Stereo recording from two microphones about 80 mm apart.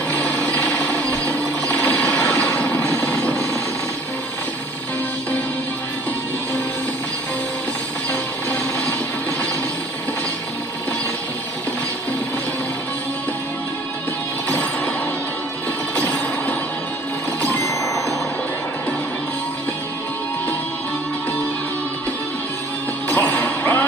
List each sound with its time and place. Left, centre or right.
0.1 s a sound: centre
8.1 s music: centre
16.0 s music: centre
17.6 s music: left
23.0 s music: left